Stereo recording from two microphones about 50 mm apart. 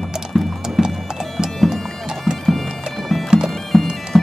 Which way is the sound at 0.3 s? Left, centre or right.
Centre.